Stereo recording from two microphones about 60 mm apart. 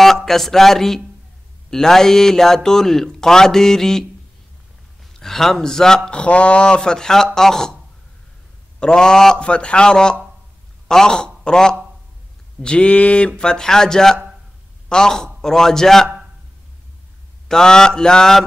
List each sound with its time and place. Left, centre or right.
0.0 s a man's voice: centre
5.2 s a man's voice: centre
8.7 s a man's voice: centre
17.5 s a man's voice: centre